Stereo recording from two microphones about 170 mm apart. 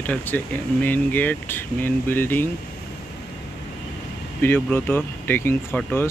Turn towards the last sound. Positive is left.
turn(degrees=10)  # may be behind; listen again after turning